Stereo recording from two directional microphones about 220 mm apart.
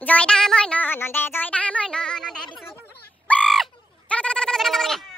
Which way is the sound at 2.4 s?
20° left (ahead or behind).